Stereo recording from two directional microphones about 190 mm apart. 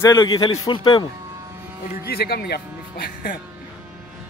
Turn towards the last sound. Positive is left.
turn(degrees=60)  # may be behind; listen again after turning